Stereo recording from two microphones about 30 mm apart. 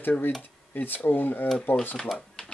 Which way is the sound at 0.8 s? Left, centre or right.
Left.